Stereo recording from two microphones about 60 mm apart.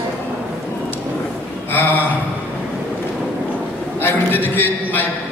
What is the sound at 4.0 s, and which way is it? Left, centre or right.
A man's voice, left.